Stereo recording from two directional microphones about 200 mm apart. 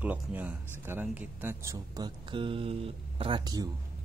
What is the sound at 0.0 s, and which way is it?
Speech, 10° right (ahead or behind).